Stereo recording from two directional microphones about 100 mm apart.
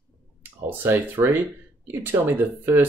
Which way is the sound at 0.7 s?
20° right (ahead or behind).